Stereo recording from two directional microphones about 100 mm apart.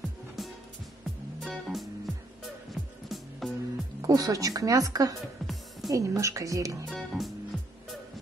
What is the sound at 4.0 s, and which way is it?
Speech, 35° right (ahead or behind).